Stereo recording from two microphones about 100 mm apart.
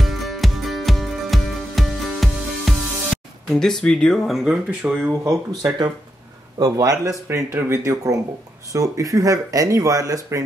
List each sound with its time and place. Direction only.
0.0 s music: centre (ahead or behind)
4.6 s speech: 10° right (ahead or behind)
5.2 s speech: 35° right (ahead or behind)